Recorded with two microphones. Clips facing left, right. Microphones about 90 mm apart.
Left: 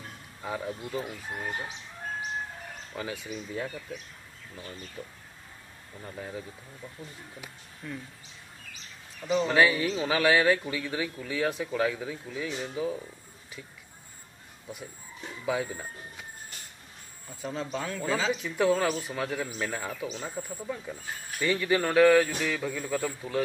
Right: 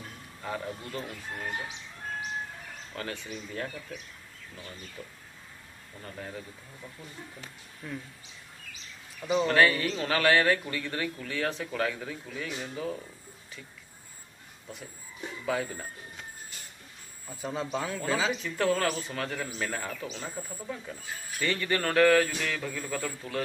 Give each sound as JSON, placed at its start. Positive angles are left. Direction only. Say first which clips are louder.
{"t": 0.4, "sound": "a man's voice", "louder": "left 2 dB", "side_deg": 10}
{"t": 2.9, "sound": "a man's voice", "louder": "left 1 dB", "side_deg": 10}
{"t": 5.0, "sound": "speech", "louder": "left 3 dB", "side_deg": 20}
{"t": 6.0, "sound": "a man's voice", "louder": "left 2 dB", "side_deg": 10}
{"t": 7.8, "sound": "speech", "louder": "even", "side_deg": -5}
{"t": 9.3, "sound": "a man's voice", "louder": "even", "side_deg": 0}
{"t": 15.4, "sound": "a man's voice", "louder": "left 1 dB", "side_deg": 5}
{"t": 17.3, "sound": "a man's voice", "louder": "right 1 dB", "side_deg": -5}